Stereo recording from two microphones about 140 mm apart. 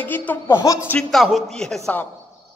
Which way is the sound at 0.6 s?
25° left (ahead or behind).